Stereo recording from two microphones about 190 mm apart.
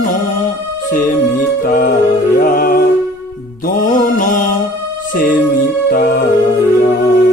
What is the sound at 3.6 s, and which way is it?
Mantra, 45° left (ahead or behind).